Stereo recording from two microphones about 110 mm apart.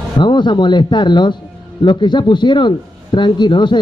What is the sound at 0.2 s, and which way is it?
A man's voice, 45° left (ahead or behind).